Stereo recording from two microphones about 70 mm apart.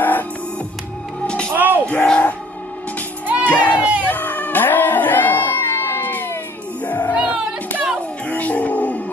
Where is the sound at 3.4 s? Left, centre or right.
Left.